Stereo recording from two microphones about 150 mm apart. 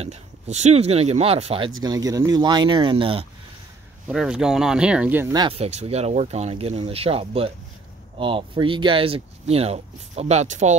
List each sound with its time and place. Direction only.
0.0 s speech: 45° right (ahead or behind)
1.8 s speech: 25° right (ahead or behind)
4.1 s speech: 5° right (ahead or behind)
5.5 s speech: 45° right (ahead or behind)